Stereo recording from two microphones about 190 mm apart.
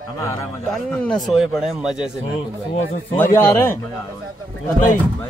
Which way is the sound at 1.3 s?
Centre (ahead or behind).